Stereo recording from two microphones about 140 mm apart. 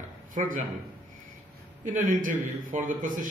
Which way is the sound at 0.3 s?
65° right (ahead or behind).